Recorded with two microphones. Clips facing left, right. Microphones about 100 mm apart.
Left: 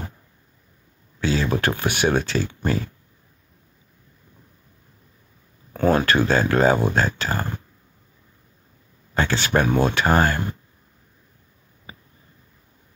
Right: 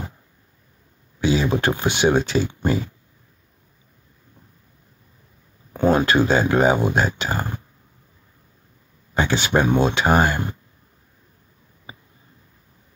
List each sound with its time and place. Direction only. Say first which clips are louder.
1.2 s speech: right 2 dB; 15° right (ahead or behind)
5.7 s speech: right 1 dB; 15° right (ahead or behind)
9.1 s speech: right 1 dB; 15° right (ahead or behind)